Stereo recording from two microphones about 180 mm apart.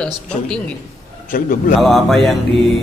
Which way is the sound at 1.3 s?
50° left (ahead or behind).